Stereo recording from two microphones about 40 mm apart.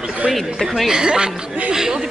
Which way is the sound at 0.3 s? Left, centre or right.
Centre.